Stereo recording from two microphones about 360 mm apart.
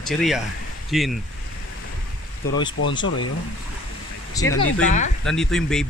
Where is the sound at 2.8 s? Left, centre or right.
Left.